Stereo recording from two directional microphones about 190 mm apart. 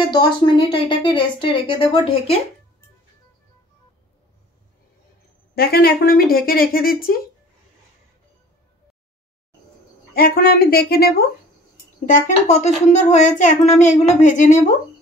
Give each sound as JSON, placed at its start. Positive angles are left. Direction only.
{"t": 0.1, "sound": "a woman's voice", "side_deg": 25}
{"t": 5.5, "sound": "speech", "side_deg": 55}
{"t": 10.1, "sound": "speech", "side_deg": 50}
{"t": 12.1, "sound": "a child's voice", "side_deg": 40}